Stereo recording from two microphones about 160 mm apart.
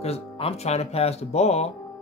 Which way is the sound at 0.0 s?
40° left (ahead or behind).